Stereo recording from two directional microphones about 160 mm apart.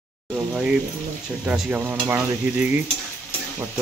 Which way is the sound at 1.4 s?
5° right (ahead or behind).